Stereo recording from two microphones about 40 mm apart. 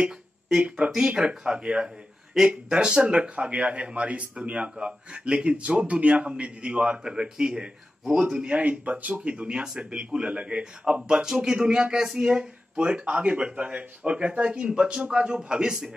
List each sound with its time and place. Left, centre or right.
0.7 s speech: right
11.0 s speech: centre